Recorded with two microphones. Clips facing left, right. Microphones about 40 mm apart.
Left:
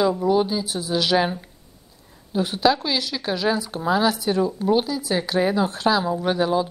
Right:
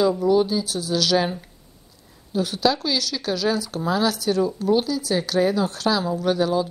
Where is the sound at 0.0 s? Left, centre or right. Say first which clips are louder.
Right 1 dB; centre.